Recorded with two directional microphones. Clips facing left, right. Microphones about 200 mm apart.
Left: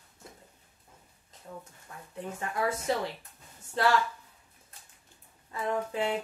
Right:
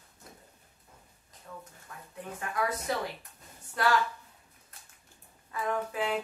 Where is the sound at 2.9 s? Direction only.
25° left (ahead or behind).